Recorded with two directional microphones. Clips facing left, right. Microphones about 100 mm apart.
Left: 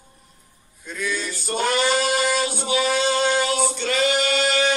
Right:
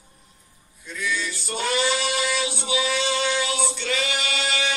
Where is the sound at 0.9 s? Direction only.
50° left (ahead or behind).